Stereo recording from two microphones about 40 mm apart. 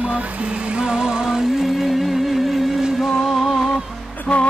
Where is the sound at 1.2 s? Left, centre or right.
Centre.